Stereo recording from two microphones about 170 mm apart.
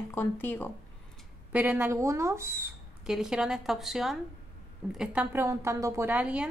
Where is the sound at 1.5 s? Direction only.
10° right (ahead or behind).